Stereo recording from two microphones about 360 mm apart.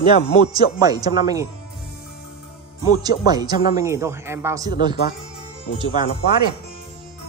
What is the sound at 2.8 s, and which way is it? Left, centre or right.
Speech, centre.